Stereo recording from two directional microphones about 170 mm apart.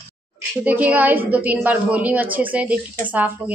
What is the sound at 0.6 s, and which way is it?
A woman's voice, 10° right (ahead or behind).